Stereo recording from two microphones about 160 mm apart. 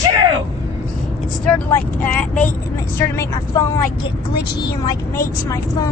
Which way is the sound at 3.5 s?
20° left (ahead or behind).